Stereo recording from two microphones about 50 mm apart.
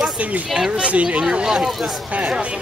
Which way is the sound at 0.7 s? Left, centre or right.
Right.